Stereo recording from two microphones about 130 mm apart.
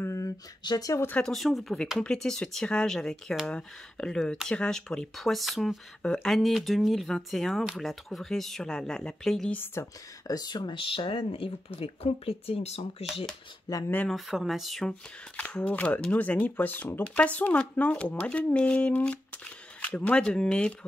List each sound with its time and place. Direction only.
0.0 s a sound: 25° left (ahead or behind)
1.0 s speech: 10° left (ahead or behind)
1.3 s speech: centre (ahead or behind)
9.6 s speech: 25° left (ahead or behind); by 12.8 s 50° left (ahead or behind)
13.7 s speech: 25° left (ahead or behind)
14.0 s speech: centre (ahead or behind)